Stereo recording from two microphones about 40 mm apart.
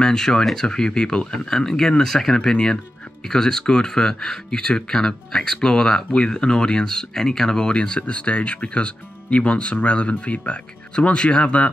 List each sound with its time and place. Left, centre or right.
0.0 s speech: centre
7.7 s speech: left